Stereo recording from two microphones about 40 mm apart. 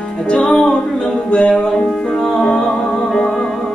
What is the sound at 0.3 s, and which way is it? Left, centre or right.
Music, left.